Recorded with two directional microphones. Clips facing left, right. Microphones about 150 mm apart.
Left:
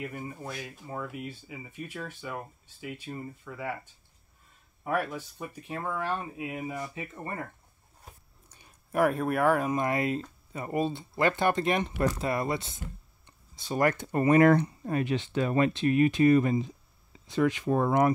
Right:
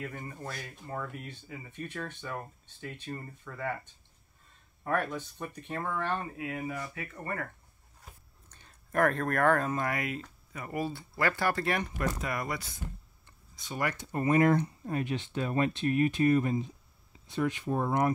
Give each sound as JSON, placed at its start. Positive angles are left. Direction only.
{"t": 0.0, "sound": "speech", "side_deg": 10}
{"t": 8.5, "sound": "speech", "side_deg": 10}
{"t": 13.6, "sound": "speech", "side_deg": 40}